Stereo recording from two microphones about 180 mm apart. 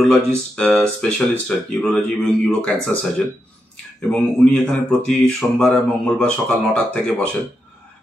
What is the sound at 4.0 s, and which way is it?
Speech, 5° left (ahead or behind).